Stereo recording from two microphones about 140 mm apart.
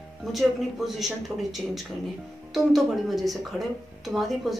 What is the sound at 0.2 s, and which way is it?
Speech, centre (ahead or behind).